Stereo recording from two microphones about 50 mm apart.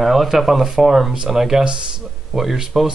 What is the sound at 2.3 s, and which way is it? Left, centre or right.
Speech, centre.